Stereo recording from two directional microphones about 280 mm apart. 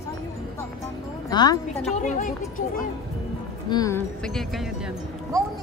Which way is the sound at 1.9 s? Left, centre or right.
Left.